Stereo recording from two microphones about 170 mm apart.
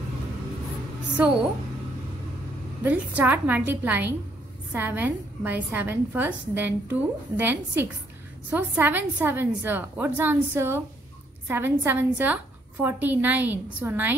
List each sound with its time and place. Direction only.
1.2 s a woman's voice: 10° right (ahead or behind)
2.8 s a woman's voice: 10° right (ahead or behind)